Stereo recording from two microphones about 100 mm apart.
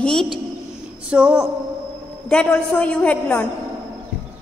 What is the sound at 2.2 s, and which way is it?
A woman's voice, 10° left (ahead or behind).